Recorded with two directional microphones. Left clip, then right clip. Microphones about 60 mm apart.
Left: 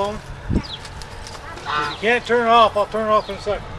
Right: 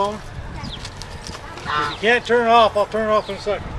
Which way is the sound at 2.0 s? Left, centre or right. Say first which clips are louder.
Right 1 dB; right.